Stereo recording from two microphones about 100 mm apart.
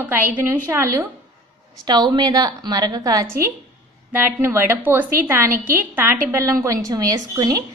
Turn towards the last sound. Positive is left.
turn(degrees=-40)  # may be behind; listen again after turning